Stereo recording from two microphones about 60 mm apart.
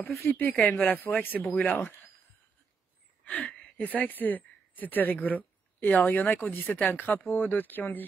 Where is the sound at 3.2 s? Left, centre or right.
Centre.